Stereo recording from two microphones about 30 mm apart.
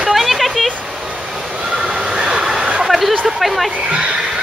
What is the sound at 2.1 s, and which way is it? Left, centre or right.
Train, right.